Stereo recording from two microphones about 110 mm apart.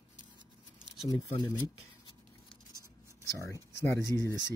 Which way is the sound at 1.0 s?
35° left (ahead or behind).